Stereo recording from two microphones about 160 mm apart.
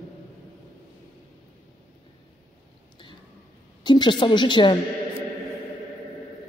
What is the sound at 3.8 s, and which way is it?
Speech, 30° left (ahead or behind).